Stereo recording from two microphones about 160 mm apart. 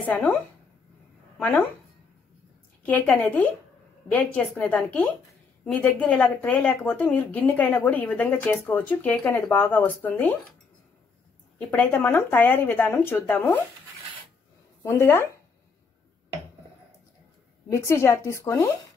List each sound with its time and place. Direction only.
0.0 s speech: 10° left (ahead or behind)
2.8 s speech: 10° left (ahead or behind)
11.5 s speech: 10° left (ahead or behind)
14.8 s speech: 15° left (ahead or behind)
17.6 s speech: 15° left (ahead or behind)